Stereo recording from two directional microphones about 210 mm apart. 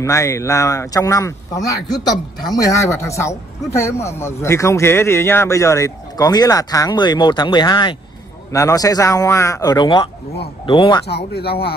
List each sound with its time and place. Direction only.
0.0 s a man's voice: 15° left (ahead or behind)
11.1 s speech: 50° left (ahead or behind)